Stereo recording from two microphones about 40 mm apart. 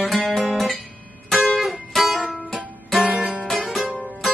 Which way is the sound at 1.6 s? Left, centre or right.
Centre.